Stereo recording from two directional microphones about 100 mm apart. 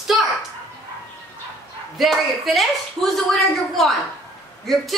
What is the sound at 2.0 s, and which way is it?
Speech, centre (ahead or behind).